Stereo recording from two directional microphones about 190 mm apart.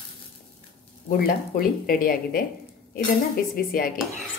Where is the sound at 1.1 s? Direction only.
50° left (ahead or behind).